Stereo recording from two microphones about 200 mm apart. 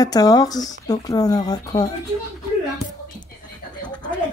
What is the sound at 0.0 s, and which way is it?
Speech, 20° left (ahead or behind).